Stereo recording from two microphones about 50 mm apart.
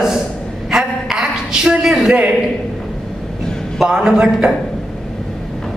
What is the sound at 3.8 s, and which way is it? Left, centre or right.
Speech, centre.